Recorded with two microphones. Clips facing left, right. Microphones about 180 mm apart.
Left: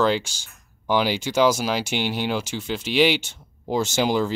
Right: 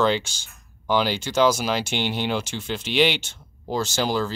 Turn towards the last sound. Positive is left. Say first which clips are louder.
# left 3 dB
turn(degrees=15)  # may be behind; listen again after turning